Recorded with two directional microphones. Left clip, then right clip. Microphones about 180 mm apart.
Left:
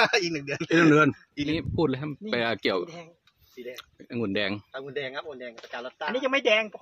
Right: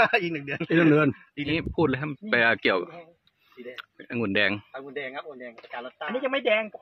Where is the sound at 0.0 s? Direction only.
90° left.